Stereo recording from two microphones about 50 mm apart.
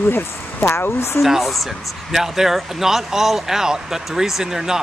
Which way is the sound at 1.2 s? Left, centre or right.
Centre.